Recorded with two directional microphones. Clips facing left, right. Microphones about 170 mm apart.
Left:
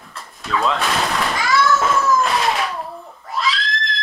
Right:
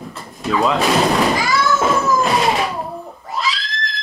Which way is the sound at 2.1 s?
25° right (ahead or behind).